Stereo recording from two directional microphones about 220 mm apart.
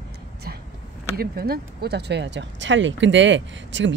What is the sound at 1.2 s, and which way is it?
Speech, 45° right (ahead or behind).